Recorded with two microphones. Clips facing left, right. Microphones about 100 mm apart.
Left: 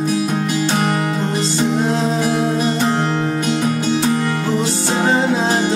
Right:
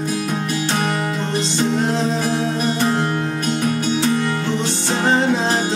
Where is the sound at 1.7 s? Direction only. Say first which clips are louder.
Left 2 dB; 5° left (ahead or behind).